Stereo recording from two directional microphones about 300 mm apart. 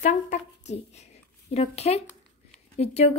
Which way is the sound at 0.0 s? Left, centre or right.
Left.